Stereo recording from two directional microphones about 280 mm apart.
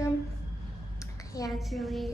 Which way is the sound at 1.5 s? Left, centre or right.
Centre.